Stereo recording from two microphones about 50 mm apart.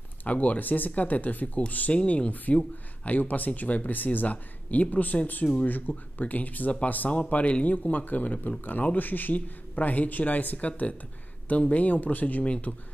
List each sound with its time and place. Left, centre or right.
0.2 s speech: left